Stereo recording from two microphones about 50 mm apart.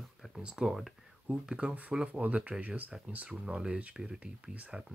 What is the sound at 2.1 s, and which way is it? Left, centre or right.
Speech, right.